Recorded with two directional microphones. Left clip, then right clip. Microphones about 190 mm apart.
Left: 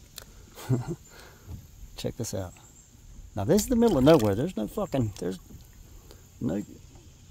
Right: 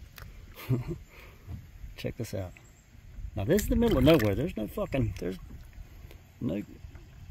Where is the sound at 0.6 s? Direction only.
20° left (ahead or behind).